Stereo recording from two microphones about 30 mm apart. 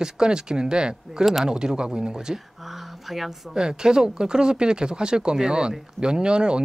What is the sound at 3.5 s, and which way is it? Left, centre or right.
Speech, right.